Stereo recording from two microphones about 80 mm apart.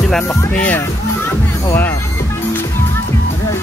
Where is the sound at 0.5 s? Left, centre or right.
Centre.